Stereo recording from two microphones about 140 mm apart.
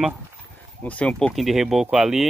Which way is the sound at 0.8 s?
10° left (ahead or behind).